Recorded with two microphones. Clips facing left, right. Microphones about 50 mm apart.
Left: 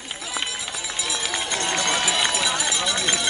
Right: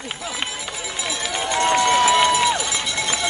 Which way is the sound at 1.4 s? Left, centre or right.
Right.